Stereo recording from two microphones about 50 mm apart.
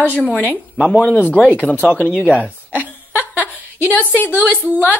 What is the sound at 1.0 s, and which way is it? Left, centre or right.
Speech, left.